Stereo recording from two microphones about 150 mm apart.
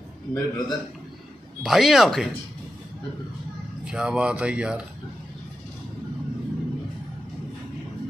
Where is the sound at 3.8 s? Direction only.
5° right (ahead or behind).